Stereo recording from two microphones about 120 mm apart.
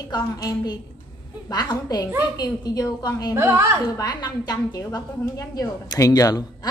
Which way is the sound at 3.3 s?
20° right (ahead or behind).